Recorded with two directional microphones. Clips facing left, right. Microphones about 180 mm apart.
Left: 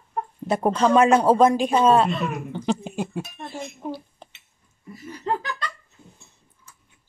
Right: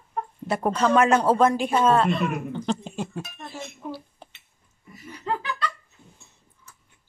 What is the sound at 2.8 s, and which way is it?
Speech, 10° left (ahead or behind).